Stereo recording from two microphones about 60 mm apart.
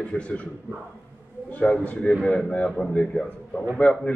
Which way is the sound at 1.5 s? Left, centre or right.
Left.